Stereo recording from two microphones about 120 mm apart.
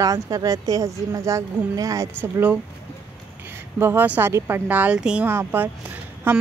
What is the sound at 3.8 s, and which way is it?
Speech, 15° right (ahead or behind).